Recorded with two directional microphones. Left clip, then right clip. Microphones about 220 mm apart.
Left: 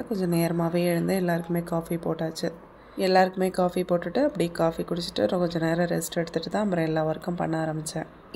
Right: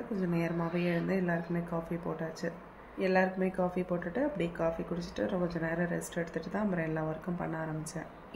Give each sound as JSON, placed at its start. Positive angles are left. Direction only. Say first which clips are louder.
{"t": 0.1, "sound": "speech", "louder": "left 8 dB", "side_deg": 50}